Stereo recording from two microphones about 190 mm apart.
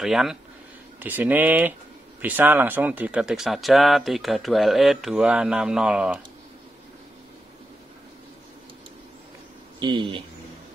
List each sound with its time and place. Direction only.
0.0 s speech: centre (ahead or behind)
9.8 s speech: 25° right (ahead or behind)